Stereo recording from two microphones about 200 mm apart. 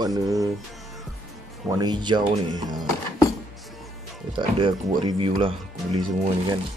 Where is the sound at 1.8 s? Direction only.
20° right (ahead or behind).